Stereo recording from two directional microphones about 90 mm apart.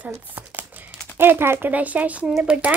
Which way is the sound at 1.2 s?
25° right (ahead or behind).